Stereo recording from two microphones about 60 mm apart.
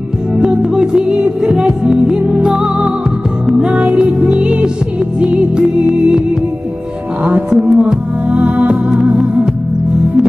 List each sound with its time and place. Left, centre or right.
0.6 s music: centre
7.2 s speech: right
7.9 s music: centre